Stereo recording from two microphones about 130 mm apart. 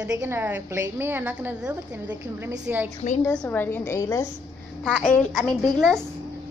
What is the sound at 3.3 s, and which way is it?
Speech, 10° left (ahead or behind).